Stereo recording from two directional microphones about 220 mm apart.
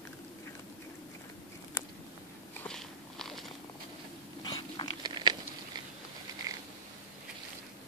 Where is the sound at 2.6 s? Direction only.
5° left (ahead or behind).